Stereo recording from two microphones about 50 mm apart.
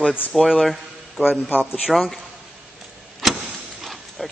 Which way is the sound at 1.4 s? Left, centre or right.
Left.